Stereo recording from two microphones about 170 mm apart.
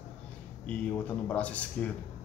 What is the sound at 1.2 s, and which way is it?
Speech, 10° left (ahead or behind).